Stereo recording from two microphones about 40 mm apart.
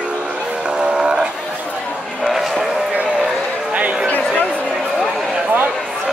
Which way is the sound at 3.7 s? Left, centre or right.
Right.